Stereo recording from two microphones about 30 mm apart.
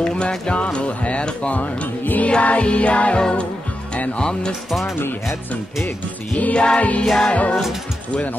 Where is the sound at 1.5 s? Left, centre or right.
Left.